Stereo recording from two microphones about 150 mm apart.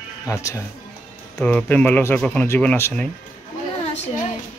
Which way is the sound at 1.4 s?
10° left (ahead or behind).